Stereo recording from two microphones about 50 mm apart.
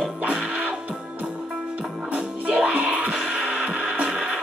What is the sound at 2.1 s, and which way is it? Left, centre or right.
Music, centre.